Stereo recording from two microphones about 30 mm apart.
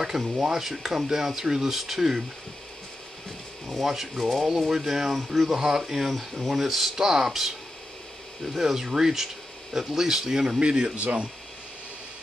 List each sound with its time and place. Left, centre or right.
0.2 s speech: centre
3.8 s speech: centre
8.5 s speech: centre
10.6 s speech: right
11.0 s speech: right